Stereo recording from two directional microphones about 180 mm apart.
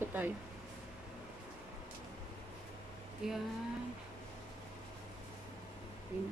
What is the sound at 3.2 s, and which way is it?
Speech, 5° right (ahead or behind).